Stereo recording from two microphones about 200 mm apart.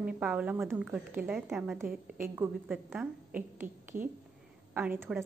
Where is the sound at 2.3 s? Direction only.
10° right (ahead or behind).